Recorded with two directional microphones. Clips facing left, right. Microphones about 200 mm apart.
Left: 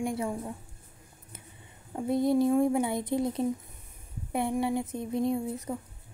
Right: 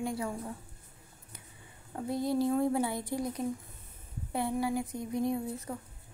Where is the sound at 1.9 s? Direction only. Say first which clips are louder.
Left 5 dB; 20° left (ahead or behind).